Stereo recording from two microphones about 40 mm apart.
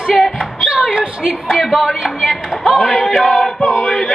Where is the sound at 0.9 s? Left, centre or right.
Right.